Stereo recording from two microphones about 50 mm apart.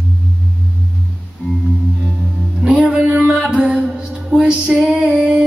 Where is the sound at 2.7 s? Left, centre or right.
Right.